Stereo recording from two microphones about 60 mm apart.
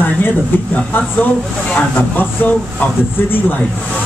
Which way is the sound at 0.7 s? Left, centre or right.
Left.